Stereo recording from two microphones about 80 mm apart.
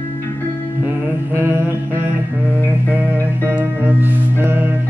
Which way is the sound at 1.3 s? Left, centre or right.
Right.